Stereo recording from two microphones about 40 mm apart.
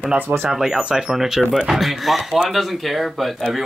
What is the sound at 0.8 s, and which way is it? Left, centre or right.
Speech, right.